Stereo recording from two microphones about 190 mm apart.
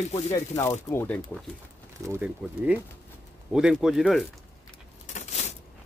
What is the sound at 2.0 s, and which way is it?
Speech, 10° right (ahead or behind).